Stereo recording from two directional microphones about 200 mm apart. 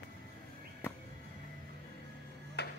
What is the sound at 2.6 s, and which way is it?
Hammer, 55° left (ahead or behind).